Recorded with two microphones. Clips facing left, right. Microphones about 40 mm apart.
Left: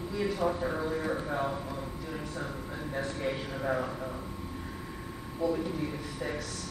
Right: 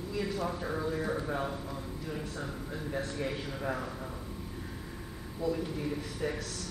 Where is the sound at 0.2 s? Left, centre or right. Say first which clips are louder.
Left 5 dB; centre.